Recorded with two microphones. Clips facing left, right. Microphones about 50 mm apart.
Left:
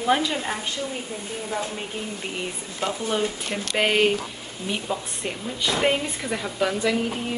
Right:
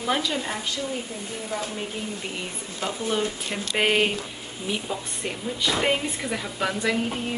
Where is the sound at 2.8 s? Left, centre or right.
Centre.